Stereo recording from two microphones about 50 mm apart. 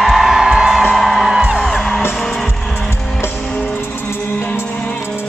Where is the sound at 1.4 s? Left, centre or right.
Centre.